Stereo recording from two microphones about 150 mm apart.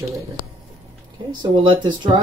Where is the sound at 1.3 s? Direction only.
30° right (ahead or behind).